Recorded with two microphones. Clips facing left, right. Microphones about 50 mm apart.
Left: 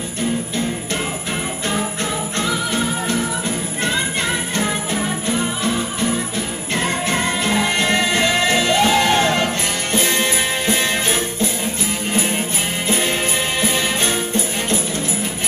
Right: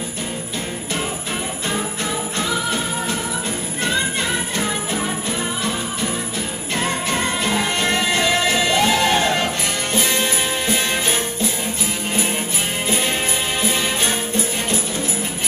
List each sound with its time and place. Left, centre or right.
7.1 s music: centre
10.2 s music: centre
12.8 s music: centre